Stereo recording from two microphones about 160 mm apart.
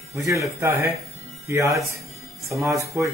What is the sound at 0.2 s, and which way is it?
Speech, 20° right (ahead or behind).